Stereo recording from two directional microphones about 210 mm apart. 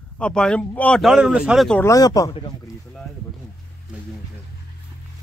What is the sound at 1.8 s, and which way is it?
Speech, 15° left (ahead or behind).